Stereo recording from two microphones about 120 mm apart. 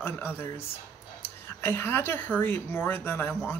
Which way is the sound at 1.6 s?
20° left (ahead or behind).